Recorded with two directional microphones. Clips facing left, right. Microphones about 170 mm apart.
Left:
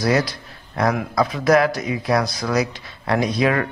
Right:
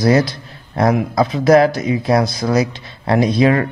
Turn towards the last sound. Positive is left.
turn(degrees=-25)  # may be behind; listen again after turning